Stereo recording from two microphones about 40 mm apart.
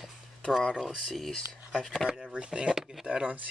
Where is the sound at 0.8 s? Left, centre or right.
Centre.